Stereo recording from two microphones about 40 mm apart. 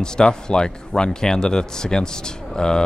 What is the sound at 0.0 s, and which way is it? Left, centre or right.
Speech, centre.